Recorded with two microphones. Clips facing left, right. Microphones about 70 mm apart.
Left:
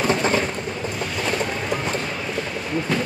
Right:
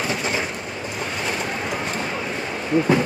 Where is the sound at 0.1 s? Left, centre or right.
Left.